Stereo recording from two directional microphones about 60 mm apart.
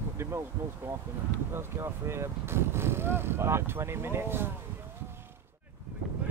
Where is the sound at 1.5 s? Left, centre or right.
Right.